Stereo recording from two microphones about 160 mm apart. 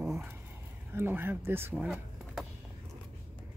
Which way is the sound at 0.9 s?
15° right (ahead or behind).